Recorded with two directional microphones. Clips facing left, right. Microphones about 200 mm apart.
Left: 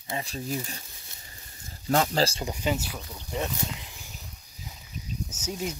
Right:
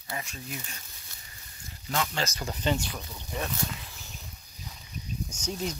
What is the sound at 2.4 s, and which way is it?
Speech, 10° left (ahead or behind).